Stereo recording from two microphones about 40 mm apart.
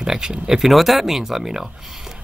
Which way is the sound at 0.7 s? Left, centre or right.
Centre.